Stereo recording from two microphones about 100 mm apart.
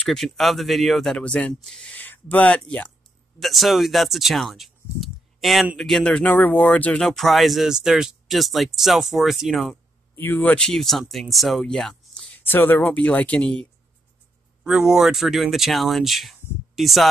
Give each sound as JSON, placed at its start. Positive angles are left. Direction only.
{"t": 0.0, "sound": "speech", "side_deg": 0}
{"t": 2.0, "sound": "speech", "side_deg": 15}
{"t": 3.3, "sound": "speech", "side_deg": 0}
{"t": 10.1, "sound": "speech", "side_deg": 20}
{"t": 10.7, "sound": "speech", "side_deg": 5}
{"t": 12.4, "sound": "speech", "side_deg": 20}
{"t": 14.6, "sound": "speech", "side_deg": -5}